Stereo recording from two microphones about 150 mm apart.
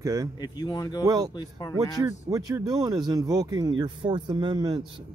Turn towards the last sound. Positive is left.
turn(degrees=-25)  # may be behind; listen again after turning